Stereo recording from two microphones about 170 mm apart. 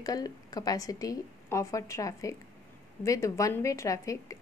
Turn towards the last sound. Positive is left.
turn(degrees=20)  # may be behind; listen again after turning